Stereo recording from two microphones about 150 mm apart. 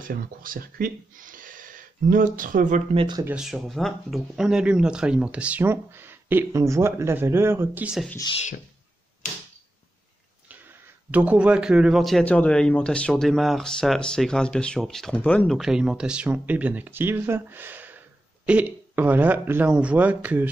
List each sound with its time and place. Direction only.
0.0 s speech: 65° right (ahead or behind)
2.9 s speech: 35° right (ahead or behind)
3.3 s speech: 5° right (ahead or behind)
11.1 s speech: 10° right (ahead or behind)